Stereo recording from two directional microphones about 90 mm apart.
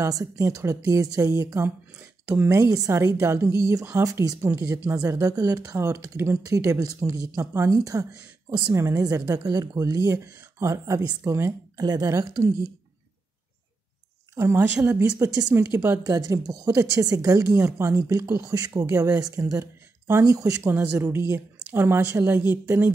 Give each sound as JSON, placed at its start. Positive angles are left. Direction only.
{"t": 0.0, "sound": "speech", "side_deg": -35}
{"t": 3.2, "sound": "speech", "side_deg": -25}
{"t": 3.4, "sound": "speech", "side_deg": -35}
{"t": 4.5, "sound": "speech", "side_deg": -30}
{"t": 11.8, "sound": "a woman's voice", "side_deg": -45}
{"t": 14.3, "sound": "a woman's voice", "side_deg": -25}
{"t": 16.1, "sound": "speech", "side_deg": -40}
{"t": 20.6, "sound": "speech", "side_deg": -25}